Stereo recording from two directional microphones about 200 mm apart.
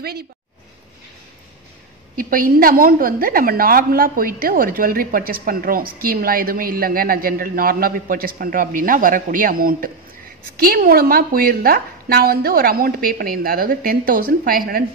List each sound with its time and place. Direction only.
2.1 s a woman's voice: 45° right (ahead or behind)